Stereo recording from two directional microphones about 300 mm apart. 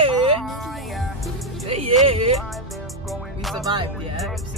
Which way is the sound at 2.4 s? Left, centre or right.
Centre.